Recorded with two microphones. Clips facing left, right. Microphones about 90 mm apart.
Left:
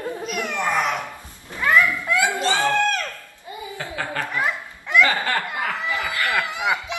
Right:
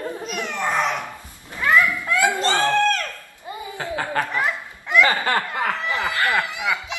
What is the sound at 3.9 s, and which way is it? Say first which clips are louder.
Laughter: right 4 dB; 40° right (ahead or behind).